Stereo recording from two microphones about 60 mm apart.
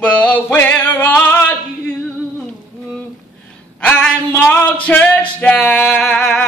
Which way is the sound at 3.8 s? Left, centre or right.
Centre.